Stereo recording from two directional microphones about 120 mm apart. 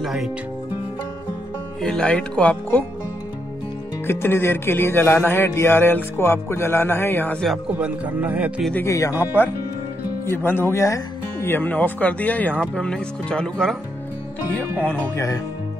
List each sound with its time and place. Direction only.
0.0 s speech: centre (ahead or behind)
1.8 s speech: 5° left (ahead or behind)
4.1 s speech: 20° left (ahead or behind)
7.8 s speech: 10° right (ahead or behind)
8.8 s speech: 25° left (ahead or behind); by 13.7 s 5° left (ahead or behind)
14.9 s speech: 25° left (ahead or behind)